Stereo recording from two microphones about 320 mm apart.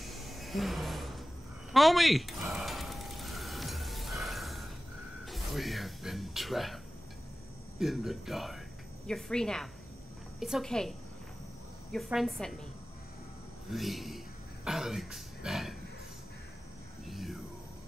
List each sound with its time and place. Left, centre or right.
0.0 s a sound: centre
5.2 s music: centre
7.8 s speech: centre
13.7 s speech: centre
17.1 s whispering: centre